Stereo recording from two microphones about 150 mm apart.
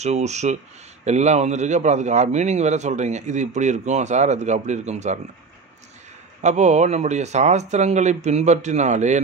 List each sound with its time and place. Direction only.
0.0 s a man's voice: 50° right (ahead or behind)
6.4 s a man's voice: 50° right (ahead or behind)